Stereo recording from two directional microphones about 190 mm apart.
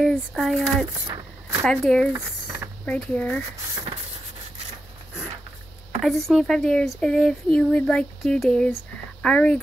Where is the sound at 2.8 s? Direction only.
5° left (ahead or behind).